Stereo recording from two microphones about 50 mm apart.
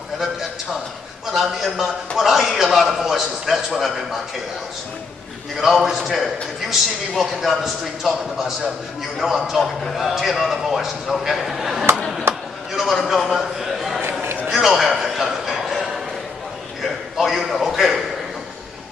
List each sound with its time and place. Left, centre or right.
1.2 s a man's voice: centre
5.6 s a man's voice: centre
12.7 s a sound: centre